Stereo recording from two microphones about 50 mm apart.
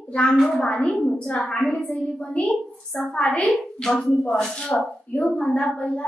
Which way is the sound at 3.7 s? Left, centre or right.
Centre.